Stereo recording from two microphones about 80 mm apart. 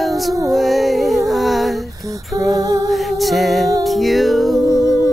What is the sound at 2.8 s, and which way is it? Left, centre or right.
Music, centre.